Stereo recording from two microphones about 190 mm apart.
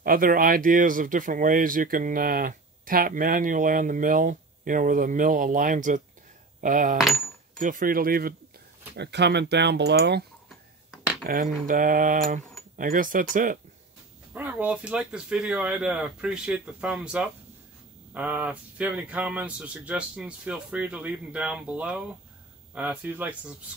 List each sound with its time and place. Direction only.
0.0 s speech: 50° right (ahead or behind)
8.9 s speech: 65° right (ahead or behind)
11.2 s speech: 45° right (ahead or behind)
14.3 s speech: 10° right (ahead or behind)